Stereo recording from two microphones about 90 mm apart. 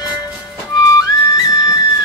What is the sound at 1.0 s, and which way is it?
Music, 45° left (ahead or behind).